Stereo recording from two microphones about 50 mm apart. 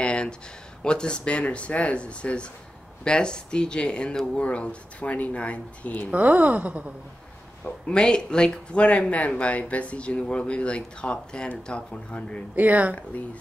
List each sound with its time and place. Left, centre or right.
0.0 s a sound: centre
0.8 s speech: centre
6.1 s speech: right
7.8 s speech: centre
12.5 s speech: right
12.9 s speech: left